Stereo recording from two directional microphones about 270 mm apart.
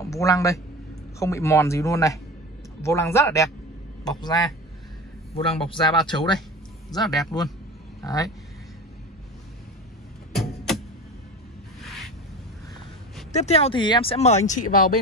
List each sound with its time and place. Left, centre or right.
0.0 s speech: centre
7.0 s a man's voice: centre
8.0 s a man's voice: centre
10.3 s vehicle: centre
13.3 s speech: left